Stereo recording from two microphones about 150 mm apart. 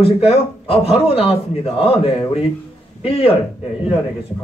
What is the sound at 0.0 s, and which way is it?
A man's voice, 40° left (ahead or behind).